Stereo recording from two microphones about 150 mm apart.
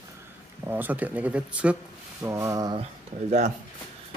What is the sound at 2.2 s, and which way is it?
Speech, 20° right (ahead or behind).